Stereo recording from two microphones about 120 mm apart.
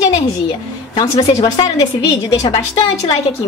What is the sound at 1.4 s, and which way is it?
A woman's voice, 40° left (ahead or behind).